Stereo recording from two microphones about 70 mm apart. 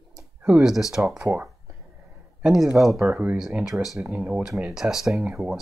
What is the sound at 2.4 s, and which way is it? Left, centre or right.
Speech, centre.